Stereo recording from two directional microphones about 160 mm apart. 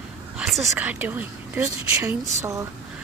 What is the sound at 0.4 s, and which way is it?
Whispering, centre (ahead or behind).